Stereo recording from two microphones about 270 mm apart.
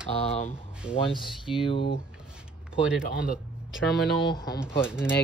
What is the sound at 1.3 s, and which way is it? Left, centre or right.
Speech, centre.